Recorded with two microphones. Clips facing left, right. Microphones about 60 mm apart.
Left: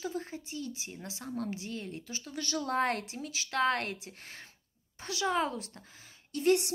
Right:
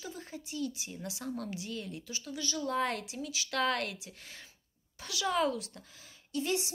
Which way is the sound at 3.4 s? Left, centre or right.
Left.